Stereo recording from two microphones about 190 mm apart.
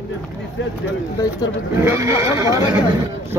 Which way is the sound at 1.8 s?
15° right (ahead or behind).